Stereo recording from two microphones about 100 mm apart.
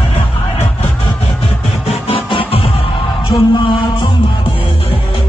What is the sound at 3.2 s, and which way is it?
Music, 50° left (ahead or behind).